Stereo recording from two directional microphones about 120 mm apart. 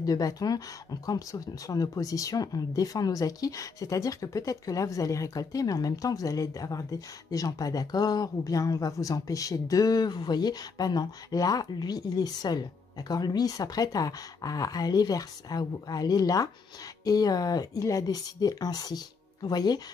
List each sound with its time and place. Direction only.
0.0 s speech: 30° left (ahead or behind)